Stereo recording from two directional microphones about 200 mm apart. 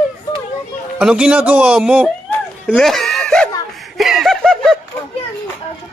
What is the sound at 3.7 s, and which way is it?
Snicker, centre (ahead or behind).